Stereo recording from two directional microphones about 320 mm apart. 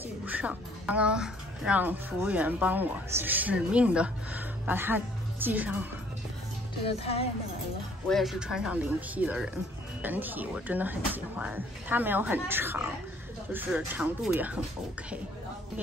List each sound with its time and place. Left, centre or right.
0.0 s speech: centre
7.0 s speech: centre
8.1 s speech: centre